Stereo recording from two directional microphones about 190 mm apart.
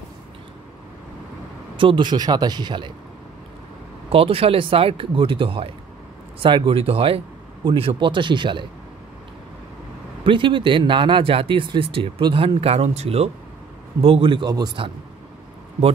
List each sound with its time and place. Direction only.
1.8 s speech: 25° right (ahead or behind)
4.1 s speech: 30° right (ahead or behind)
10.2 s speech: 25° right (ahead or behind)